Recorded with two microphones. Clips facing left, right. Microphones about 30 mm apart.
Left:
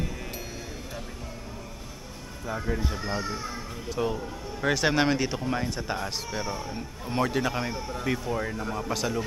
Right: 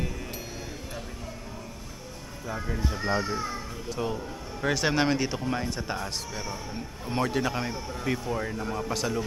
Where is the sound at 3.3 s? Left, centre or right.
Centre.